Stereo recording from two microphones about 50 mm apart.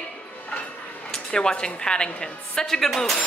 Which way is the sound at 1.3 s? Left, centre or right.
Centre.